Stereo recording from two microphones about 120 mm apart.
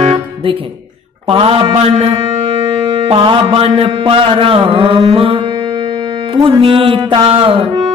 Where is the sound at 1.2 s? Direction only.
50° right (ahead or behind).